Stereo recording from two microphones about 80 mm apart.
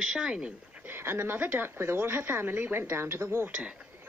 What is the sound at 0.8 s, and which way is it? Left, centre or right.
Speech, right.